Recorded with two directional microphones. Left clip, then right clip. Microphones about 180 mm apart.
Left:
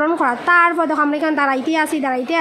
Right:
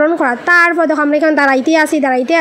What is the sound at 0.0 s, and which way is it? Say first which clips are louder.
A woman's voice: right 4 dB; 20° right (ahead or behind).